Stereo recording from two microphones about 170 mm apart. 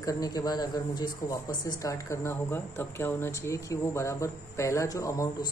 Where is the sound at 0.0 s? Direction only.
20° left (ahead or behind).